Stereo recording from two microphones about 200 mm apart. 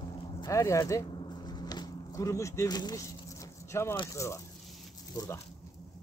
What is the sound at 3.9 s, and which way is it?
Speech, 20° left (ahead or behind).